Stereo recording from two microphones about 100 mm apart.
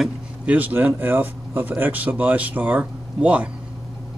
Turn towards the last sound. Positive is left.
turn(degrees=-10)  # may be behind; listen again after turning